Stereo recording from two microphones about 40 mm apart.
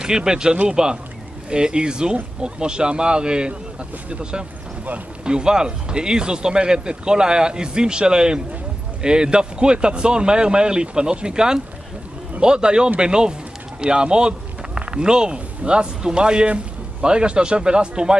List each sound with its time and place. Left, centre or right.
0.0 s a man's voice: centre